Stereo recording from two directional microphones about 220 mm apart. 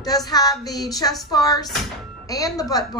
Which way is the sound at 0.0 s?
15° left (ahead or behind).